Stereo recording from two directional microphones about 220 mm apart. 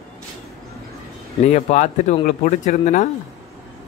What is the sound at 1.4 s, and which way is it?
A man's voice, 30° left (ahead or behind).